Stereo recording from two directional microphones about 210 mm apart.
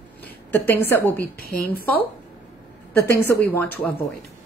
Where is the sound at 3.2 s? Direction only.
10° left (ahead or behind).